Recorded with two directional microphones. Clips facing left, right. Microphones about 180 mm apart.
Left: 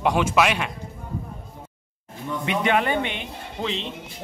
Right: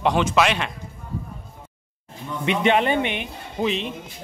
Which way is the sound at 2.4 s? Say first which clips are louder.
Right 3 dB; 20° right (ahead or behind).